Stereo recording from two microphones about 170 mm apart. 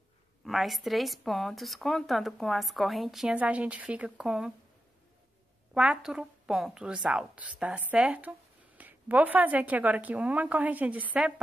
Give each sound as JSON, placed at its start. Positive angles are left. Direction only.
{"t": 0.4, "sound": "speech", "side_deg": 0}
{"t": 5.8, "sound": "a woman's voice", "side_deg": -5}